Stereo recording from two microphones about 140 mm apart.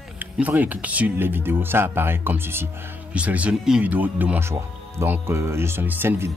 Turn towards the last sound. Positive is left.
turn(degrees=-15)  # may be behind; listen again after turning